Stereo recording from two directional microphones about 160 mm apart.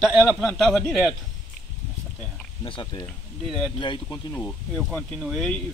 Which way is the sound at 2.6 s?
30° left (ahead or behind).